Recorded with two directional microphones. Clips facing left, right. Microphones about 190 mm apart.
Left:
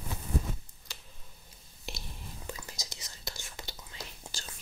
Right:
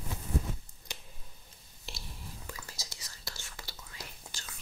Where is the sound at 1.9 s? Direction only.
20° left (ahead or behind).